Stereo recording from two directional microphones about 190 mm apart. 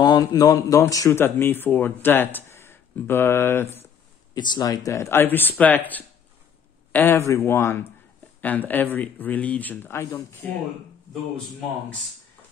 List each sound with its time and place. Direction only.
0.0 s speech: 20° left (ahead or behind)
6.9 s speech: 10° left (ahead or behind)